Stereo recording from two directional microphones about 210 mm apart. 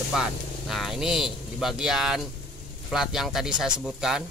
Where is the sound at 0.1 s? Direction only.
Centre (ahead or behind).